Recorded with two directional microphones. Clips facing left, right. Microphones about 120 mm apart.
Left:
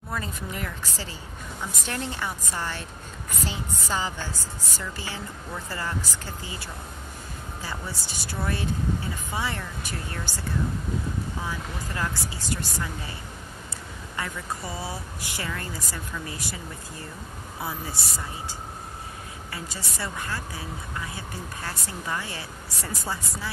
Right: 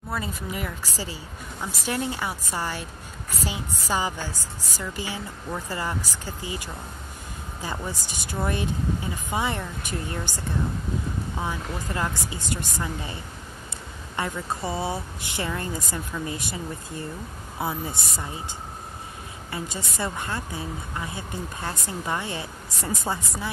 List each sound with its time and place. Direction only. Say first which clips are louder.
0.1 s a woman's voice: right 2 dB; 5° right (ahead or behind)
11.4 s speech: right 3 dB; 20° right (ahead or behind)
14.1 s speech: right 4 dB; 25° right (ahead or behind)
19.5 s speech: right 5 dB; 25° right (ahead or behind)